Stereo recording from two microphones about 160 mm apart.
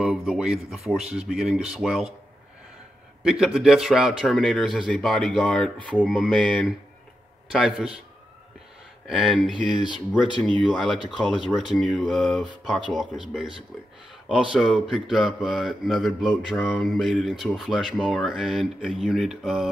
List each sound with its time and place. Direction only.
0.0 s mantra: 5° right (ahead or behind)
3.3 s mantra: centre (ahead or behind)
5.9 s mantra: 5° right (ahead or behind)
9.0 s mantra: centre (ahead or behind)
9.8 s speech: 30° left (ahead or behind)
10.9 s mantra: 5° right (ahead or behind)